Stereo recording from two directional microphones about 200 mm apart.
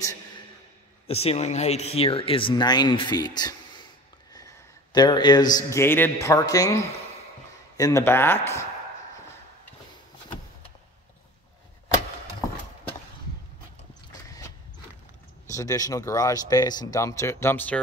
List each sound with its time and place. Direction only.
1.0 s speech: 30° left (ahead or behind)
4.9 s speech: 20° left (ahead or behind)
15.4 s speech: 15° left (ahead or behind)